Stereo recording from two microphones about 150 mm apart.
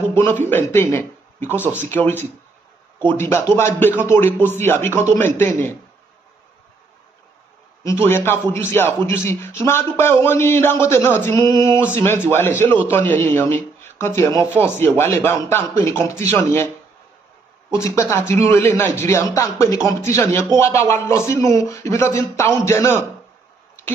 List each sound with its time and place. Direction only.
0.0 s a sound: 15° left (ahead or behind)
0.5 s speech: 15° left (ahead or behind)
1.5 s speech: 10° right (ahead or behind)
1.8 s a man's voice: 15° left (ahead or behind)
7.8 s a man's voice: 15° left (ahead or behind)
17.6 s a man's voice: 20° left (ahead or behind)